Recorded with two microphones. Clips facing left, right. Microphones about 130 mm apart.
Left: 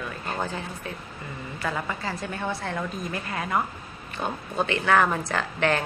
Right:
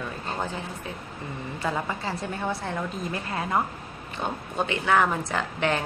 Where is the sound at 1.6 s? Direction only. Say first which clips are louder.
Right 1 dB; 25° right (ahead or behind).